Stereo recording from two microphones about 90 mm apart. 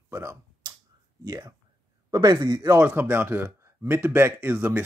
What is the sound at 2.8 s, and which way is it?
Speech, 25° right (ahead or behind).